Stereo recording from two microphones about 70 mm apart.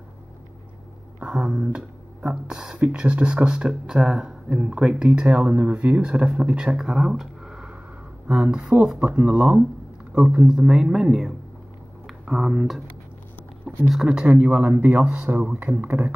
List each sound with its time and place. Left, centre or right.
1.2 s speech: centre
1.6 s speech: centre
13.8 s speech: centre
14.5 s speech: right
15.0 s speech: centre